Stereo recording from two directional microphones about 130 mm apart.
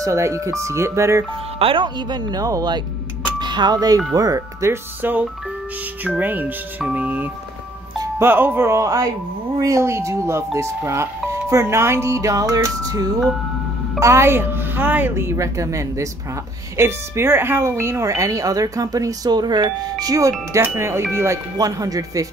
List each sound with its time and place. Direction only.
0.0 s speech: 20° right (ahead or behind)
1.6 s speech: 40° right (ahead or behind)